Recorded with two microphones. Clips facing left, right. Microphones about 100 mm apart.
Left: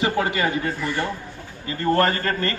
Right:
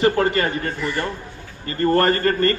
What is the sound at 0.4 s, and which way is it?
Speech, 10° left (ahead or behind).